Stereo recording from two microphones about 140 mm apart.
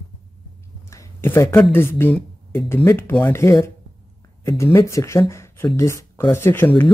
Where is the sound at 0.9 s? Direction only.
20° left (ahead or behind).